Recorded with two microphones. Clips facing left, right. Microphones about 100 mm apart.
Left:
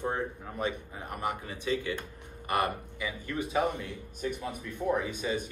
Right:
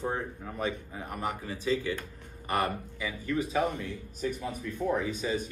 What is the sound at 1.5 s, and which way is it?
A man's voice, 20° left (ahead or behind).